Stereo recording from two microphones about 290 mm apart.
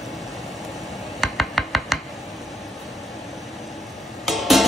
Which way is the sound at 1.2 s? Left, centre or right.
Centre.